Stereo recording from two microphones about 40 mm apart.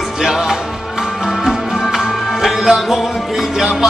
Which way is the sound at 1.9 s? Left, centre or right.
Centre.